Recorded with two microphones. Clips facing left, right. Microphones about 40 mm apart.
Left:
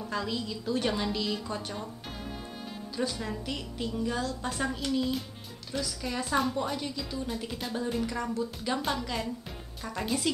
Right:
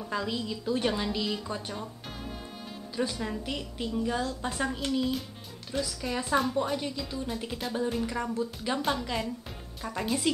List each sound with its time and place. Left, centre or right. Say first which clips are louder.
0.0 s a woman's voice: right 1 dB; centre
3.0 s a woman's voice: right 2 dB; centre
4.6 s a woman's voice: right 1 dB; centre